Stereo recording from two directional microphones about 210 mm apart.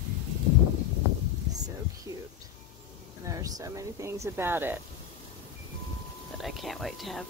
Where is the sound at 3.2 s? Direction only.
15° right (ahead or behind).